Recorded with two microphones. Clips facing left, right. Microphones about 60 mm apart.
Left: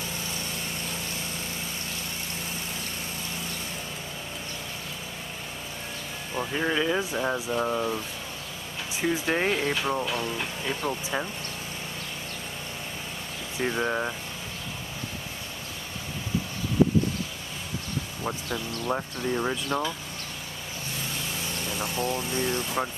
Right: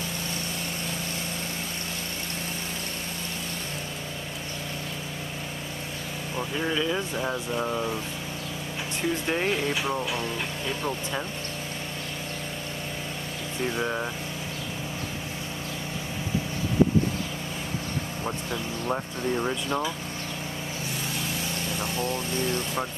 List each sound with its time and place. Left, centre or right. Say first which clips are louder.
6.3 s speech: left 2 dB; centre
9.1 s speech: left 1 dB; centre
13.6 s speech: left 2 dB; centre
18.9 s speech: even; centre
21.7 s speech: left 2 dB; centre